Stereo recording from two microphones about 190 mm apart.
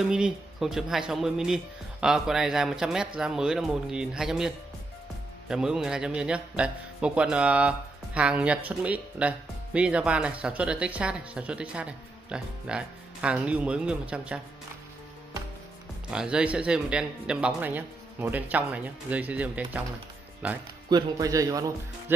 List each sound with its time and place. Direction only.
0.1 s speech: 5° right (ahead or behind)
16.1 s speech: 5° right (ahead or behind)
20.9 s speech: 20° right (ahead or behind)